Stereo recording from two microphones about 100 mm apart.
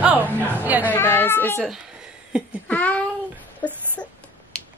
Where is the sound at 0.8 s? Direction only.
20° left (ahead or behind).